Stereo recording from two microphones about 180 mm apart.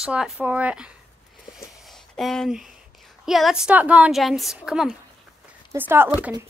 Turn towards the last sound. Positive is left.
turn(degrees=-10)  # may be behind; listen again after turning